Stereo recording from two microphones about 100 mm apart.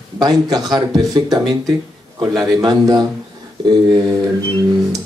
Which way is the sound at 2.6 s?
45° right (ahead or behind).